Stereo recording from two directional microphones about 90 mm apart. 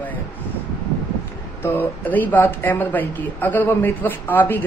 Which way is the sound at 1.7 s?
20° left (ahead or behind).